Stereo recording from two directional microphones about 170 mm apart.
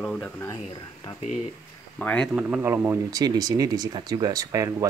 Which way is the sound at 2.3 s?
10° right (ahead or behind).